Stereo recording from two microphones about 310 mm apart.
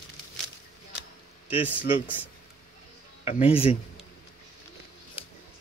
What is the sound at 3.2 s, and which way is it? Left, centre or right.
Speech, centre.